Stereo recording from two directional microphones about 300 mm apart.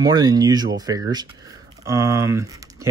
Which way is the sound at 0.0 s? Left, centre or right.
Centre.